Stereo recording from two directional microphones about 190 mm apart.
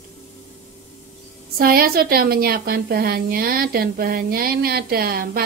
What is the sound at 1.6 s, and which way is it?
A woman's voice, 50° right (ahead or behind).